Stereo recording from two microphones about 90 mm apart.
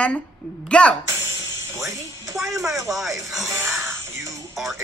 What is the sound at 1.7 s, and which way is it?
Speech, 35° right (ahead or behind).